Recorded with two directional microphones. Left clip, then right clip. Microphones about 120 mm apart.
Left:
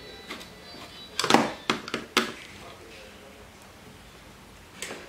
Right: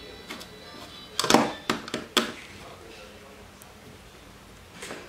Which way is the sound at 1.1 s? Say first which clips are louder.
Right 1 dB; 10° right (ahead or behind).